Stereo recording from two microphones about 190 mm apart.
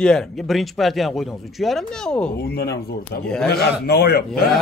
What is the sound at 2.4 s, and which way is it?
Speech, 55° left (ahead or behind).